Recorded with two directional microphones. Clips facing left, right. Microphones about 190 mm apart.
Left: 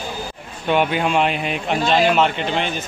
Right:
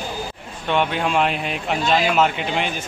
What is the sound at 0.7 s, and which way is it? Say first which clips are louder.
A man's voice: left 2 dB; 5° left (ahead or behind).